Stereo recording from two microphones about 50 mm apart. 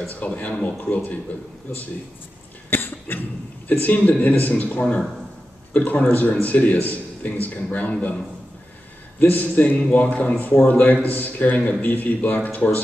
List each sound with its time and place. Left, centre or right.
0.3 s a man's voice: left
9.2 s a man's voice: left